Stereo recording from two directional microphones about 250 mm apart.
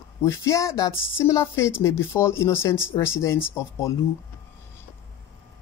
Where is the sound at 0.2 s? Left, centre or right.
Centre.